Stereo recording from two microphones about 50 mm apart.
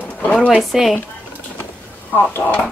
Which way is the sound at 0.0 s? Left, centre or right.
Left.